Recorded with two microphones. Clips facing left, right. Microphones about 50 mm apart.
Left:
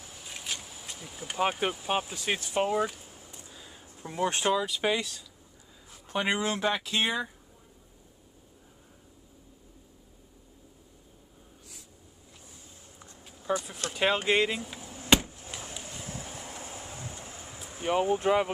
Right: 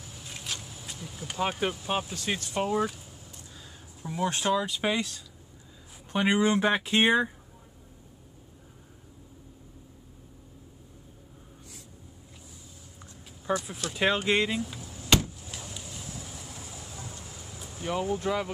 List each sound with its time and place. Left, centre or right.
0.0 s speech: centre
2.9 s a sound: left
4.0 s speech: left
4.6 s speech: centre
6.7 s speech: right
13.5 s speech: centre
15.2 s a sound: left
15.8 s vehicle: left
17.6 s speech: left